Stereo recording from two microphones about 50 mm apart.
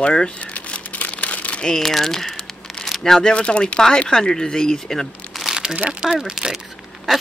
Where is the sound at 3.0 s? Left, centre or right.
Centre.